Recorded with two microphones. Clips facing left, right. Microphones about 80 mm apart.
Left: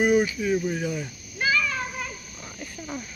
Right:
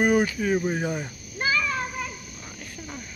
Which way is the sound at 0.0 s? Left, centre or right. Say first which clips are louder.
Even; right.